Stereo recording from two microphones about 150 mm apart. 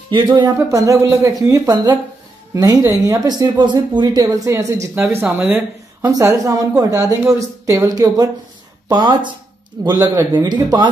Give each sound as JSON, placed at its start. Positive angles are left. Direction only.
{"t": 0.6, "sound": "speech", "side_deg": -20}